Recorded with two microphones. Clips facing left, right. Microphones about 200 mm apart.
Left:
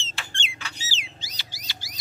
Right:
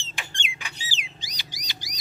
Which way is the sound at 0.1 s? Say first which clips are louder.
Right 1 dB; 15° right (ahead or behind).